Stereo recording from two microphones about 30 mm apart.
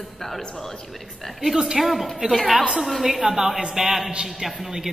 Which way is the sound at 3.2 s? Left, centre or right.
Centre.